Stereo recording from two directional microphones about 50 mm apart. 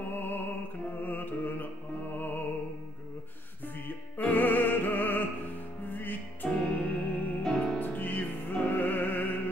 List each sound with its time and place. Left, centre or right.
0.1 s music: left
3.8 s music: left
7.4 s music: centre
7.8 s music: left